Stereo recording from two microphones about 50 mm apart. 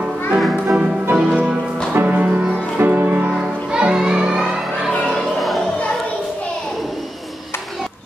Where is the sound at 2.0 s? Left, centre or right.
Right.